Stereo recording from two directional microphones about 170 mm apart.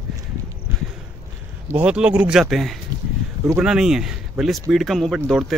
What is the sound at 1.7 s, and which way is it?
Speech, 10° right (ahead or behind).